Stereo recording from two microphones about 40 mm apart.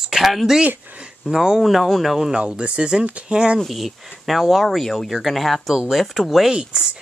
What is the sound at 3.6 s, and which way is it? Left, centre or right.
Speech, centre.